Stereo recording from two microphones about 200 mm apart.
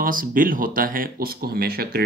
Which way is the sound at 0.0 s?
45° right (ahead or behind).